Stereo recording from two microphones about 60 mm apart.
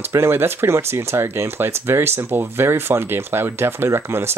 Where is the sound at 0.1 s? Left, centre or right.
Right.